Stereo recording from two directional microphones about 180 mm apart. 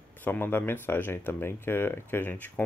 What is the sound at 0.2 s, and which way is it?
Speech, 10° left (ahead or behind).